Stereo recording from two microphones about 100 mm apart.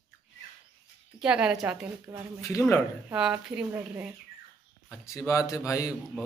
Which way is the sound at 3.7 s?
20° right (ahead or behind).